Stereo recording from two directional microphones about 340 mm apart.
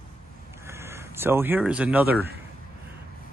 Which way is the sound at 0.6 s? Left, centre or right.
Centre.